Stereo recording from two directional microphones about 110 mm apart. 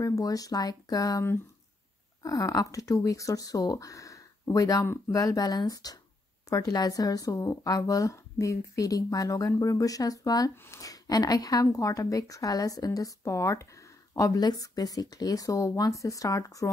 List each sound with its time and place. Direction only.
0.0 s a woman's voice: 30° left (ahead or behind)
2.2 s a woman's voice: 30° left (ahead or behind)